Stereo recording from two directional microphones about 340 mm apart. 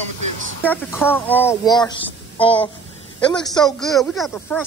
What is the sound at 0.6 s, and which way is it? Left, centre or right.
Speech, centre.